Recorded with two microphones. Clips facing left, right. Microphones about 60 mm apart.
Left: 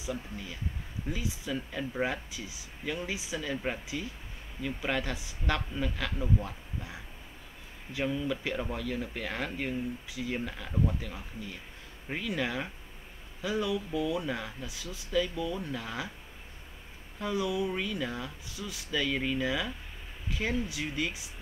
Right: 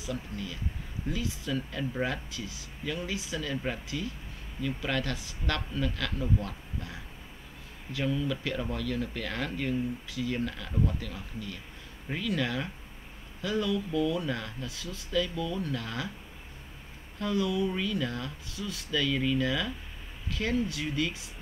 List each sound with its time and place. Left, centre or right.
0.0 s speech: centre
17.2 s speech: centre